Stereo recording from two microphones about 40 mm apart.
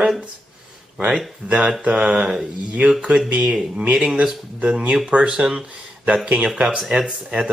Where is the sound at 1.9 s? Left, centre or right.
Right.